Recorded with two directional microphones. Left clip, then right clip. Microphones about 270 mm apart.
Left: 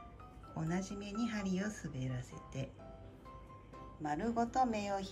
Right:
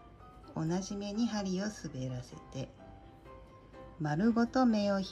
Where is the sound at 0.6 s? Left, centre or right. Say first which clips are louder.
Right 5 dB; centre.